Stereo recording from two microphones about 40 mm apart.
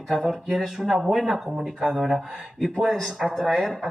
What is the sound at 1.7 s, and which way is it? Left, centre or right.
Speech, centre.